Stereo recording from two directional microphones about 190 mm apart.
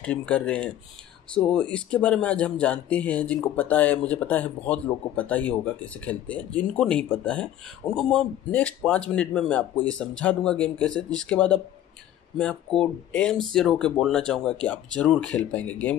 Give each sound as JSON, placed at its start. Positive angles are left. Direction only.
{"t": 0.0, "sound": "a man's voice", "side_deg": 5}